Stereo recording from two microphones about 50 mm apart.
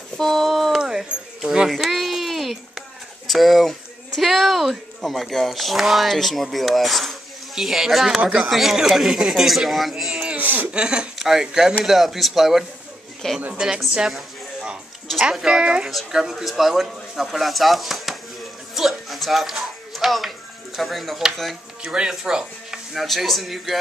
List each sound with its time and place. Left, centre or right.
0.2 s speech: centre
1.7 s a sound: centre
3.3 s speech: centre
10.1 s a sound: right
10.7 s speech: centre
11.1 s speech: centre
13.2 s speech: centre
15.1 s speech: centre
15.4 s speech: centre
18.8 s music: centre
21.8 s speech: centre
22.9 s speech: centre